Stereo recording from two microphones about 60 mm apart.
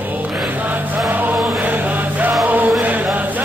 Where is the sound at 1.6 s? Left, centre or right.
Right.